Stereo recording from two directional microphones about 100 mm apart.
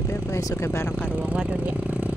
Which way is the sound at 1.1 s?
15° right (ahead or behind).